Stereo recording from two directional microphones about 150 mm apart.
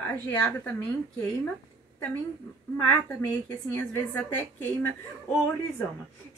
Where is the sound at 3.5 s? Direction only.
15° left (ahead or behind).